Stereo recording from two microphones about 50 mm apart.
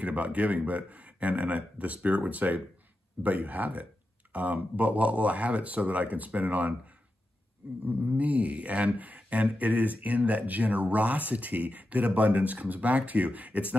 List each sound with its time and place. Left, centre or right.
0.0 s speech: right
7.8 s speech: right